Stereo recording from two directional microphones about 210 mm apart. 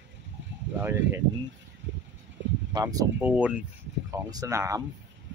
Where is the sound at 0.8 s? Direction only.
10° right (ahead or behind).